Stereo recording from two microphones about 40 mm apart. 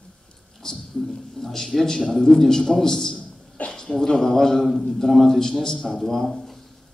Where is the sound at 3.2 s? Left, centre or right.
Left.